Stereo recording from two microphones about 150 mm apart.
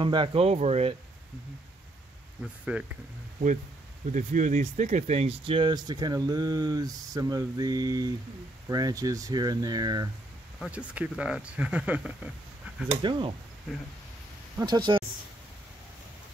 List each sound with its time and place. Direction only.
0.0 s speech: 35° right (ahead or behind)
2.7 s speech: 10° right (ahead or behind)
4.1 s speech: 55° right (ahead or behind); by 10.0 s 25° right (ahead or behind)
10.6 s speech: 10° right (ahead or behind)
13.0 s speech: 35° right (ahead or behind)
14.6 s speech: 30° right (ahead or behind)